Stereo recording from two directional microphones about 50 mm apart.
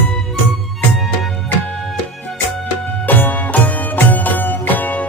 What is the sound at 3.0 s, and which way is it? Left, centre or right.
Music, left.